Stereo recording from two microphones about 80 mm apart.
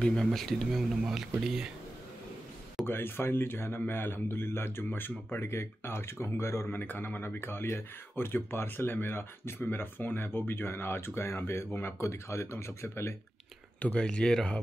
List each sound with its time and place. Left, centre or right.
0.0 s speech: centre
2.9 s speech: left
6.8 s speech: left
13.9 s speech: centre